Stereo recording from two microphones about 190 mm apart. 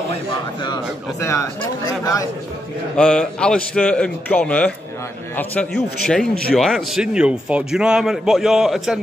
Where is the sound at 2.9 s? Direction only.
5° left (ahead or behind).